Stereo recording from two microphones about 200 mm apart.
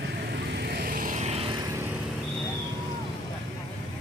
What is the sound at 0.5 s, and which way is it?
Vehicle, 55° right (ahead or behind).